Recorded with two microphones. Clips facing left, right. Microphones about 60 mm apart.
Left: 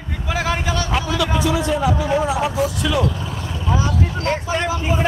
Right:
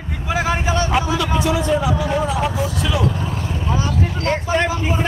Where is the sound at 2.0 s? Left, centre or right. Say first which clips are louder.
Left 1 dB; centre.